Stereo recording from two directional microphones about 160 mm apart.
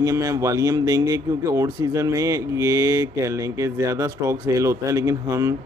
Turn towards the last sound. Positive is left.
turn(degrees=-20)  # may be behind; listen again after turning